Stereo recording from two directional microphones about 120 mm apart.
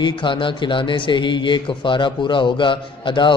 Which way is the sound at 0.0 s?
45° left (ahead or behind).